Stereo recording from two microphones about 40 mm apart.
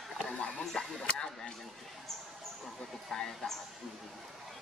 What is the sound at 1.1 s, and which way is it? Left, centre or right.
Speech, left.